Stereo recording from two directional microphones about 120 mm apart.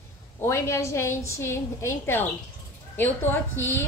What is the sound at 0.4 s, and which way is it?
A woman's voice, 20° left (ahead or behind).